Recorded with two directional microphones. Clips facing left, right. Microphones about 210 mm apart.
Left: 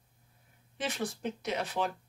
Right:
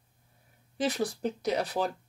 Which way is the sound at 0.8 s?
35° right (ahead or behind).